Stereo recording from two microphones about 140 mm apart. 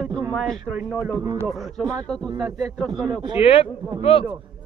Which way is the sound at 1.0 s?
20° right (ahead or behind).